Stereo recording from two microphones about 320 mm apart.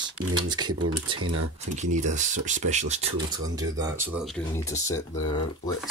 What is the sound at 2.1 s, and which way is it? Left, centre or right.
Speech, right.